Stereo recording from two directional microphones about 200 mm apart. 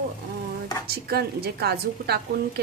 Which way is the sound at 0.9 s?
50° right (ahead or behind).